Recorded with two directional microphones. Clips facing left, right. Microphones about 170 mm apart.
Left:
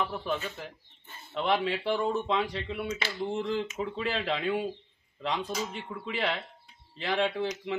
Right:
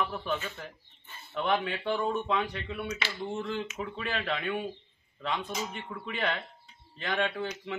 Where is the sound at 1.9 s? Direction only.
10° left (ahead or behind).